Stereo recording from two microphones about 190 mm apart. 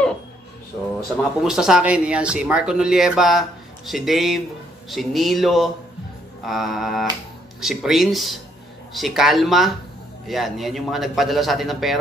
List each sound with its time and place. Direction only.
1.1 s speech: 5° right (ahead or behind)